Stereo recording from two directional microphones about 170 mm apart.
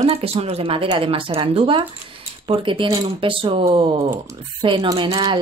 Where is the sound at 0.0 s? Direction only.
35° right (ahead or behind).